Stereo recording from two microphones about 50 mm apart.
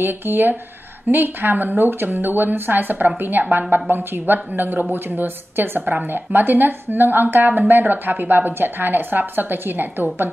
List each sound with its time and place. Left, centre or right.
0.0 s a woman's voice: right